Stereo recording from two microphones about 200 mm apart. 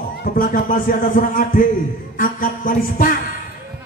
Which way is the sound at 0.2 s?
45° left (ahead or behind).